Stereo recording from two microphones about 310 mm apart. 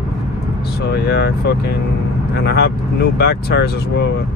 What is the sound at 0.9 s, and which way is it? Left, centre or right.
Speech, left.